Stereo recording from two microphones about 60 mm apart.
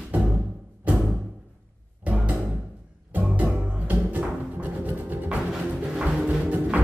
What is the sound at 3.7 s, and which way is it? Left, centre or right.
Music, right.